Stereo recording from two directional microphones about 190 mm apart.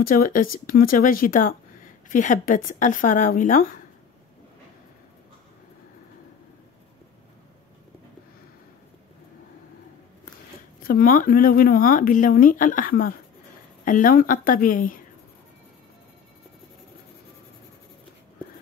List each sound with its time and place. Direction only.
0.0 s speech: 45° left (ahead or behind)
10.8 s speech: 50° left (ahead or behind)